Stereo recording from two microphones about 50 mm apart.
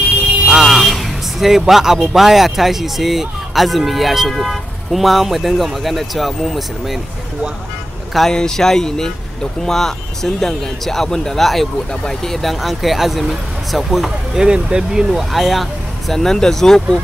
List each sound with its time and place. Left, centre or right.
0.5 s music: centre
2.1 s speech: centre
8.3 s speech: centre
14.4 s speech: centre
15.3 s speech: centre